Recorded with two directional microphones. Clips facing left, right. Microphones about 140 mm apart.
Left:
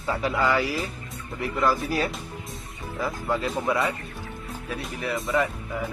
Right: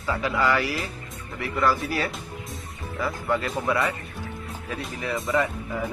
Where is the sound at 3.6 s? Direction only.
20° left (ahead or behind).